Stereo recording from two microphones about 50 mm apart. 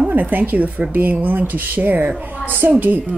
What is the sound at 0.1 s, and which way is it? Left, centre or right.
A woman's voice, right.